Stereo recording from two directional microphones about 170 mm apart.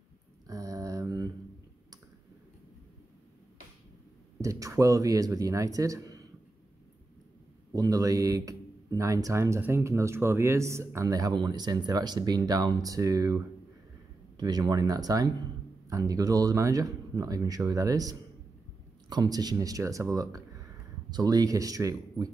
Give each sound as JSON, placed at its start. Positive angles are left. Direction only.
{"t": 0.5, "sound": "mantra", "side_deg": -20}
{"t": 4.4, "sound": "speech", "side_deg": -20}
{"t": 7.7, "sound": "speech", "side_deg": -20}